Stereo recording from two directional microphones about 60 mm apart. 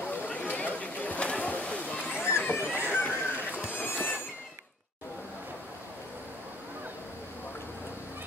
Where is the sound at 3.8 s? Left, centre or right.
Left.